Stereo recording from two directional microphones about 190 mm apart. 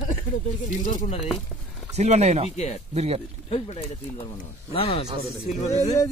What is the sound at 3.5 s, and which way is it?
A man's voice, 30° left (ahead or behind).